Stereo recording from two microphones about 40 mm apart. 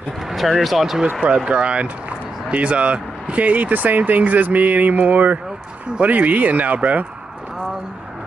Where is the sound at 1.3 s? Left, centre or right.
Right.